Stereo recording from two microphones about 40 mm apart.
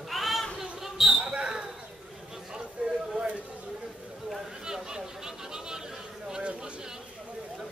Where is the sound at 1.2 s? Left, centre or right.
Right.